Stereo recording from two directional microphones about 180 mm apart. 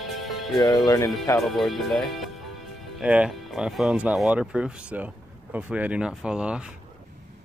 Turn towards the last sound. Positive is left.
turn(degrees=-5)  # may be behind; listen again after turning